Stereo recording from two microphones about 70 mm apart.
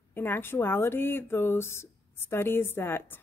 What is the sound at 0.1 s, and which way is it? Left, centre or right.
Speech, left.